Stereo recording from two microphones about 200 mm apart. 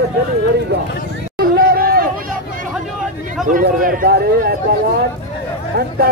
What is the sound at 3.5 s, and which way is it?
Speech, 45° right (ahead or behind).